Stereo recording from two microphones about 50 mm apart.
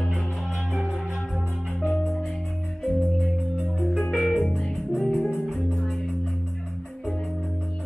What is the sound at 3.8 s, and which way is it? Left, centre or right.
Music, centre.